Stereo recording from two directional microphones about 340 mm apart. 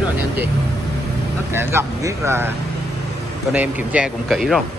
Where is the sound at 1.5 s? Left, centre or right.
Centre.